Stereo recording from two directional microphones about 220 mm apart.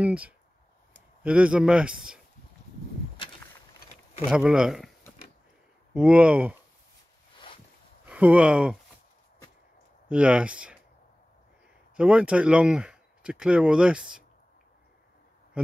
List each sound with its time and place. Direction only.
0.0 s speech: 5° right (ahead or behind)
4.3 s speech: 5° right (ahead or behind)
5.9 s speech: 5° right (ahead or behind)
7.3 s boat: 25° left (ahead or behind)
8.0 s speech: 5° right (ahead or behind)
10.0 s speech: 5° right (ahead or behind)
12.0 s speech: 5° right (ahead or behind)